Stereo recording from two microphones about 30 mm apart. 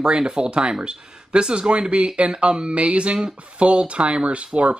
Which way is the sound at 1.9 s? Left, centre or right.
Right.